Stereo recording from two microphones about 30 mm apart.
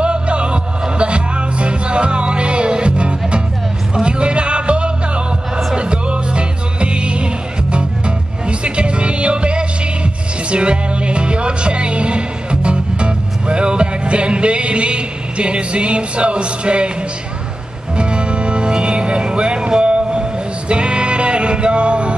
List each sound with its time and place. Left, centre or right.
0.0 s music: right
8.5 s music: right
17.9 s music: right